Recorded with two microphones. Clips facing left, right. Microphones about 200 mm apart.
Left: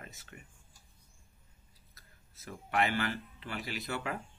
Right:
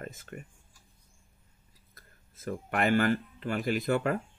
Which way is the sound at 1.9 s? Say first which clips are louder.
Right 6 dB; 50° right (ahead or behind).